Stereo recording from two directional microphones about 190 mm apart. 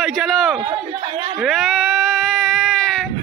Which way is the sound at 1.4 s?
Centre (ahead or behind).